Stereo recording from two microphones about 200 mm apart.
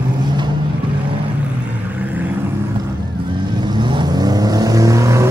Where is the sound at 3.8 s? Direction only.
20° right (ahead or behind).